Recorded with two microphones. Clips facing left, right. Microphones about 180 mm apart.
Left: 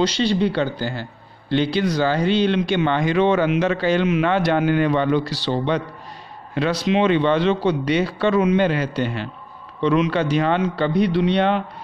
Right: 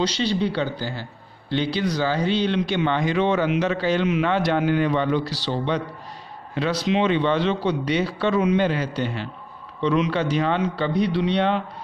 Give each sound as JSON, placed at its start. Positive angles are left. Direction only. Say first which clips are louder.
{"t": 0.0, "sound": "speech", "louder": "left 4 dB", "side_deg": 60}